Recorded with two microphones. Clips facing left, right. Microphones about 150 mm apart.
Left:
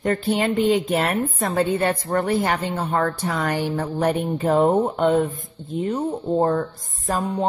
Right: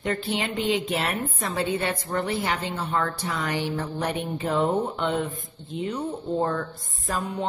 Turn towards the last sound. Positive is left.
turn(degrees=45)  # may be behind; listen again after turning